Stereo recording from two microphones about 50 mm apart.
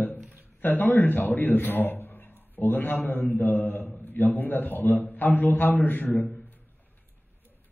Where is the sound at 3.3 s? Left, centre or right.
Left.